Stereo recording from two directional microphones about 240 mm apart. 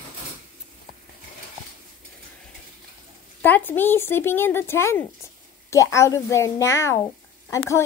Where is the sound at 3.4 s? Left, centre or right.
Centre.